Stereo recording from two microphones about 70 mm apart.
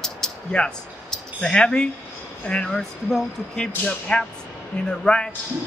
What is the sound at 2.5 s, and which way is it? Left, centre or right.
A man's voice, centre.